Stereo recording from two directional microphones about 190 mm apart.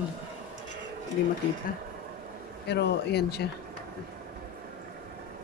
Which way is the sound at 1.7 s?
50° left (ahead or behind).